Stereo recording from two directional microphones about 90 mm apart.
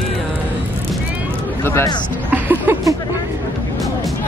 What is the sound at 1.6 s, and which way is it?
Speech, 30° left (ahead or behind).